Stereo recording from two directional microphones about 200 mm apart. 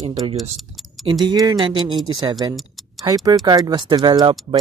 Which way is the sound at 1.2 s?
20° right (ahead or behind).